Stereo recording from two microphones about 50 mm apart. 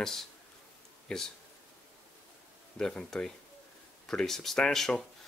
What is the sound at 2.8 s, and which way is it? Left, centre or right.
Speech, centre.